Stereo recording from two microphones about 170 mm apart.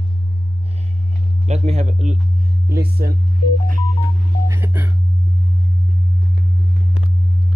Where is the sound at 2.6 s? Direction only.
65° right (ahead or behind).